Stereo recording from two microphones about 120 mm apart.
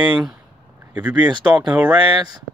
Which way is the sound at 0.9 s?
10° right (ahead or behind).